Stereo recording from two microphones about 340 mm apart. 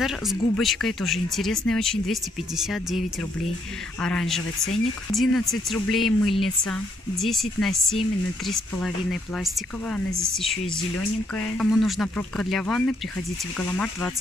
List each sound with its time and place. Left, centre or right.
0.0 s speech: centre